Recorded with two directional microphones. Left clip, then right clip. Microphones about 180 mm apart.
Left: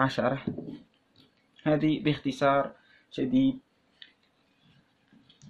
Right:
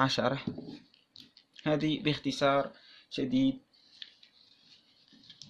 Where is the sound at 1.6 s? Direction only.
25° right (ahead or behind).